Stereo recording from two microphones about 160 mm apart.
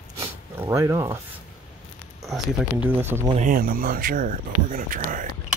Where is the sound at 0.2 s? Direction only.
20° right (ahead or behind).